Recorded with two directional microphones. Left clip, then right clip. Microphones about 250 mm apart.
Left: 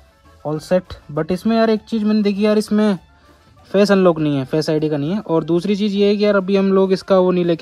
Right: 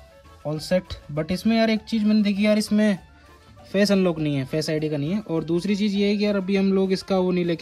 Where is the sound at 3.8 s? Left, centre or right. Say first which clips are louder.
Left 8 dB; centre.